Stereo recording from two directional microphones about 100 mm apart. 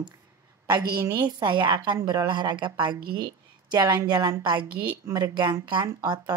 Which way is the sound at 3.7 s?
40° right (ahead or behind).